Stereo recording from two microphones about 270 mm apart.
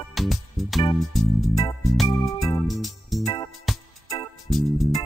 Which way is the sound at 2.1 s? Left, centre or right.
Left.